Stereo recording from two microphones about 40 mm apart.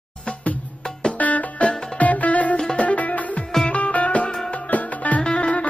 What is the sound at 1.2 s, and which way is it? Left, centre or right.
Music, left.